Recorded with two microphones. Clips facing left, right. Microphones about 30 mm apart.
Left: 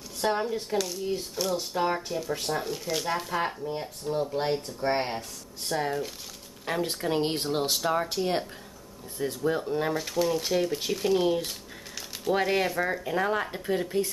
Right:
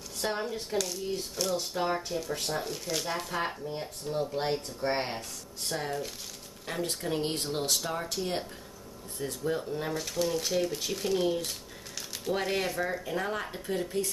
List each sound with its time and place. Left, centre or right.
0.2 s speech: centre